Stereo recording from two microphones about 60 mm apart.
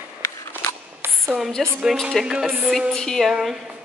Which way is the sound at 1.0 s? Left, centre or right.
Right.